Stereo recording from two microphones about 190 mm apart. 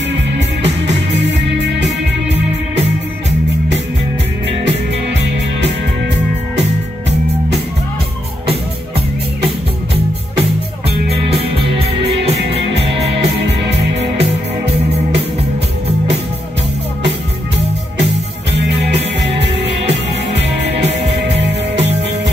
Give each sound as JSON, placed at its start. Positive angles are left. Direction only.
{"t": 0.8, "sound": "music", "side_deg": -65}
{"t": 3.3, "sound": "music", "side_deg": -70}
{"t": 11.2, "sound": "music", "side_deg": -30}
{"t": 13.2, "sound": "music", "side_deg": -60}